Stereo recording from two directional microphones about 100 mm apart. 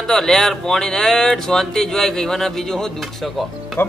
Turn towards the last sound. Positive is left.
turn(degrees=0)  # may be behind; listen again after turning